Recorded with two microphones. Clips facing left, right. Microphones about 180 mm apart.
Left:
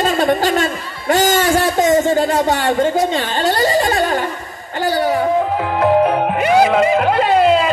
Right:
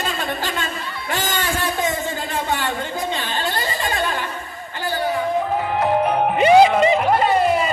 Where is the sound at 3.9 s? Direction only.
40° left (ahead or behind).